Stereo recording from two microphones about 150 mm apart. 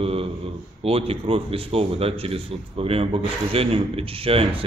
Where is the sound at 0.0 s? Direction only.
40° right (ahead or behind).